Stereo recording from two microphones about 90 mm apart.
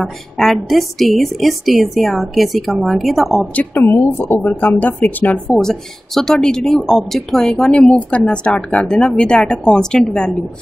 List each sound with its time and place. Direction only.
0.0 s a woman's voice: centre (ahead or behind)
3.5 s speech: 25° left (ahead or behind)
5.5 s speech: 5° left (ahead or behind)